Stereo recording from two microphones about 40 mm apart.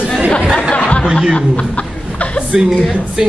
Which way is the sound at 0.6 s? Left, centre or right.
Left.